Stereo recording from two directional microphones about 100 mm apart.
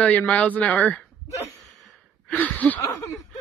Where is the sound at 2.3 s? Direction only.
15° left (ahead or behind).